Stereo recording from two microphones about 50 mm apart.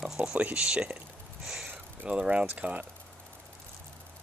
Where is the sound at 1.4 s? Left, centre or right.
Centre.